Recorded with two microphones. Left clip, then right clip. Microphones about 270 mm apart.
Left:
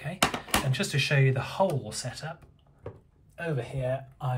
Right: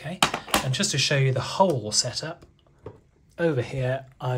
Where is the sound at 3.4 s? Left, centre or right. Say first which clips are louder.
Right 8 dB; right.